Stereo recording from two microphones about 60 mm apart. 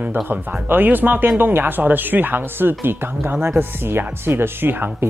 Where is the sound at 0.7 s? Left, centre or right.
Right.